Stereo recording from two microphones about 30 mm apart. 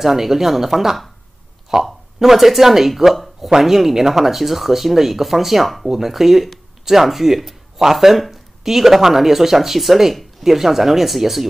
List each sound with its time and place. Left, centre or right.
0.0 s speech: centre
1.7 s speech: centre